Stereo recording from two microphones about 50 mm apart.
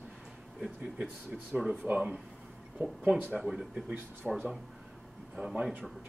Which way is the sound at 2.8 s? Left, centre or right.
Right.